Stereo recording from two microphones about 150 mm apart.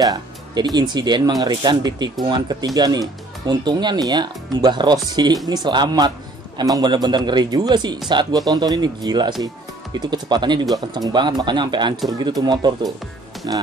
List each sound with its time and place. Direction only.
0.0 s speech: 25° right (ahead or behind)